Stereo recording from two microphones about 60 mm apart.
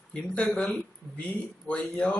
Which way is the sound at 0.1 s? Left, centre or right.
Centre.